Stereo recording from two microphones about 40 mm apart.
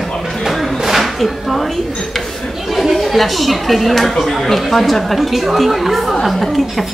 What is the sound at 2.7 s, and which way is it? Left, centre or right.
A woman's voice, centre.